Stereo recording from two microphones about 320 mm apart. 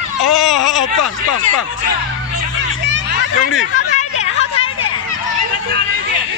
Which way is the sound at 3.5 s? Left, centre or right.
Left.